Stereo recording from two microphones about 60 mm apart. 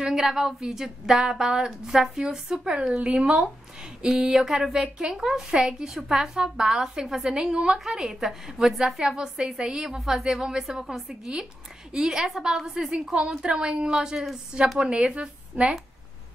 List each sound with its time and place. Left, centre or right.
0.0 s a woman's voice: centre